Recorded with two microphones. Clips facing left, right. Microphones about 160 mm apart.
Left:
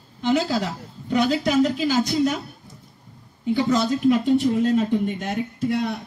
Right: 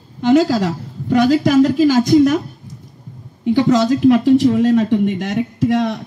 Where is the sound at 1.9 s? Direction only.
90° right.